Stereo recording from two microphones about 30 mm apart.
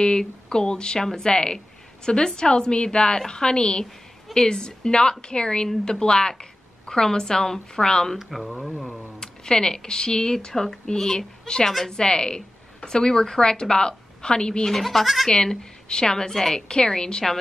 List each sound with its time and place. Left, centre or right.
0.0 s speech: left
8.3 s speech: centre
9.2 s speech: left
14.7 s speech: centre
15.2 s speech: centre